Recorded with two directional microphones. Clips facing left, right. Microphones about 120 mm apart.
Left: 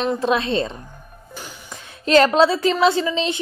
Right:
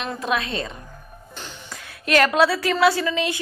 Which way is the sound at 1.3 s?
10° left (ahead or behind).